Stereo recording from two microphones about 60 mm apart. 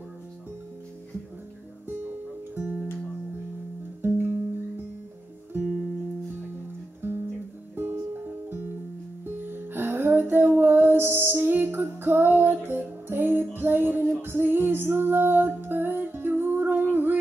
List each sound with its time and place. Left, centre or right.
2.5 s music: right
4.0 s music: right
7.0 s guitar: right
7.7 s music: right
16.9 s a sound: right